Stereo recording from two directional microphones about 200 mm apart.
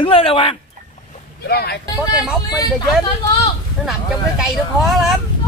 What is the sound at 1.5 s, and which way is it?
Speech, 55° left (ahead or behind).